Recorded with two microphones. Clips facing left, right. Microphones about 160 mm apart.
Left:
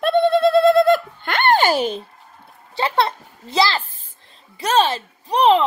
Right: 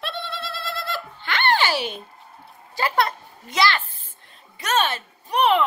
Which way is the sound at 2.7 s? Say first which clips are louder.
Left 3 dB; 25° left (ahead or behind).